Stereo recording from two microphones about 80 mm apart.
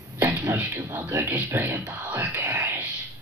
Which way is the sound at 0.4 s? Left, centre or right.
Right.